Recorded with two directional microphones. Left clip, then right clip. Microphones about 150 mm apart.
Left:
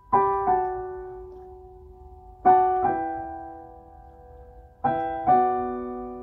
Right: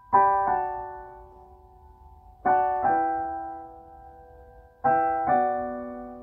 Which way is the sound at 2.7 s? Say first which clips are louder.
Right 1 dB; 15° left (ahead or behind).